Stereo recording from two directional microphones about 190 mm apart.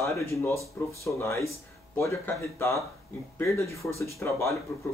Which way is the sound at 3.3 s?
15° left (ahead or behind).